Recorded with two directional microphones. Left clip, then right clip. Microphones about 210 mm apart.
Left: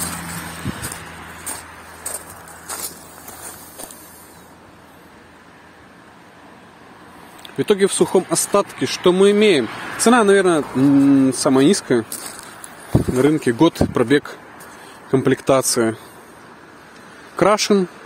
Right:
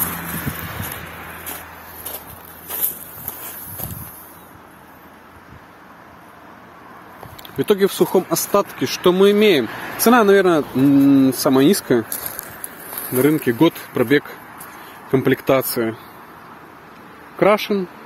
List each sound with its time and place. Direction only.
1.0 s a sound: 60° left (ahead or behind)
7.4 s speech: 5° left (ahead or behind)
9.7 s speech: 40° left (ahead or behind)
9.9 s speech: centre (ahead or behind)
13.2 s speech: 20° left (ahead or behind)
15.0 s speech: 10° left (ahead or behind)
17.4 s speech: 35° left (ahead or behind)